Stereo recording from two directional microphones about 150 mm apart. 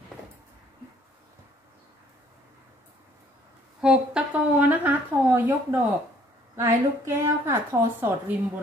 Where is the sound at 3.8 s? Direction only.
5° right (ahead or behind).